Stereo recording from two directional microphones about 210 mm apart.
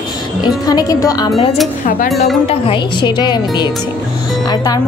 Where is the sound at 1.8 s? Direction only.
40° left (ahead or behind).